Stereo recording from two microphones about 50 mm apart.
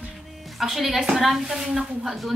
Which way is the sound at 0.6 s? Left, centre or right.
Centre.